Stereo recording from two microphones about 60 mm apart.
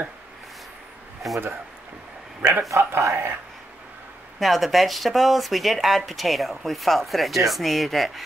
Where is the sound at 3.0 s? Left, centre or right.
Right.